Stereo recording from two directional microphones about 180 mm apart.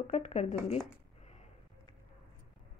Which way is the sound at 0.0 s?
40° left (ahead or behind).